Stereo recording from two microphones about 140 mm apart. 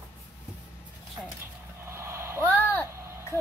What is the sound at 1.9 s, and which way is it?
Vehicle, 20° right (ahead or behind).